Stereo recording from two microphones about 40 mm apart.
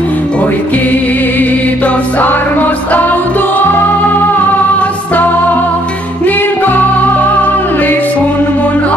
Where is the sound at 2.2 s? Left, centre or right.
Left.